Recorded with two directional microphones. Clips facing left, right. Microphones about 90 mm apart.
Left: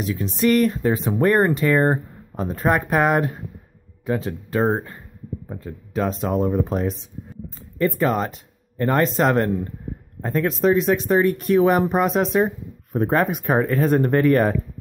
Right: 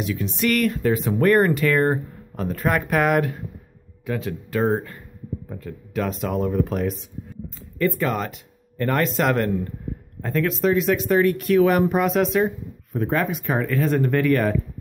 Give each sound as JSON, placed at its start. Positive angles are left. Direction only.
{"t": 0.0, "sound": "speech", "side_deg": 35}
{"t": 12.9, "sound": "speech", "side_deg": 40}